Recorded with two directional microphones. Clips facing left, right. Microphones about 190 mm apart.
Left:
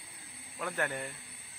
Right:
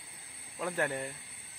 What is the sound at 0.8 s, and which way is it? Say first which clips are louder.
Speech: right 1 dB; 15° right (ahead or behind).